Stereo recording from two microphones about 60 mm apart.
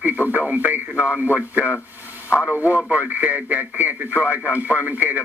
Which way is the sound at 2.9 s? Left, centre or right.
Right.